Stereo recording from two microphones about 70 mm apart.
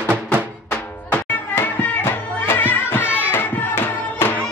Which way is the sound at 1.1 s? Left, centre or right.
Left.